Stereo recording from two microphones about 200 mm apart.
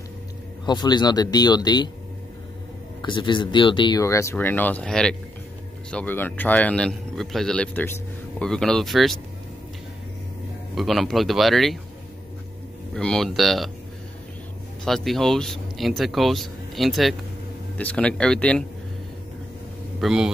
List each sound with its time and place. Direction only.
0.7 s speech: 20° left (ahead or behind)
3.0 s speech: 25° left (ahead or behind); by 9.2 s centre (ahead or behind)
10.7 s speech: centre (ahead or behind)
12.9 s speech: 5° left (ahead or behind)
14.9 s speech: centre (ahead or behind)
20.0 s speech: centre (ahead or behind)